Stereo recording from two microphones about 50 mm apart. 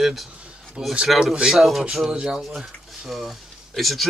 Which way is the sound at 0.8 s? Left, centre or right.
Centre.